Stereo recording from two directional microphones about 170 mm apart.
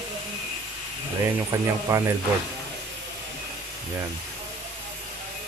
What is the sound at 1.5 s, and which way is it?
Speech, 15° right (ahead or behind).